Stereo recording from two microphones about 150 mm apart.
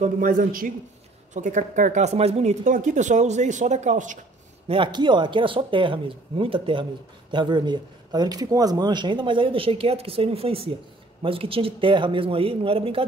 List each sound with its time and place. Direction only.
0.0 s a man's voice: 65° right (ahead or behind)
1.3 s speech: 55° right (ahead or behind)
4.6 s speech: 35° right (ahead or behind)